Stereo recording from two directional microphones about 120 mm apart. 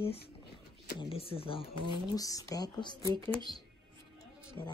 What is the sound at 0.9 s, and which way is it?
Speech, 50° left (ahead or behind).